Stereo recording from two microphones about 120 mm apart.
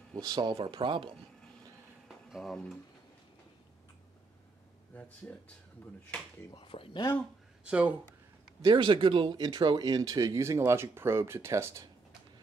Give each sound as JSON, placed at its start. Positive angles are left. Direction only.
{"t": 0.1, "sound": "speech", "side_deg": -35}
{"t": 2.0, "sound": "a sound", "side_deg": 0}
{"t": 4.9, "sound": "speech", "side_deg": 15}
{"t": 6.5, "sound": "speech", "side_deg": 45}
{"t": 7.6, "sound": "speech", "side_deg": -10}
{"t": 8.6, "sound": "speech", "side_deg": -45}